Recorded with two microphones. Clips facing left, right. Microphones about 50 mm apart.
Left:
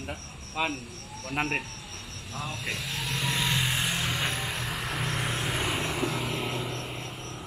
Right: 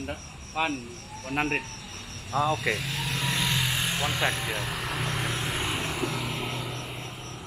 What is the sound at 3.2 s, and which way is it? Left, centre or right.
Vehicle, centre.